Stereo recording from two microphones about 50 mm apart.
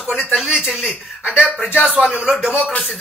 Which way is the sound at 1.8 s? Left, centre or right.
Centre.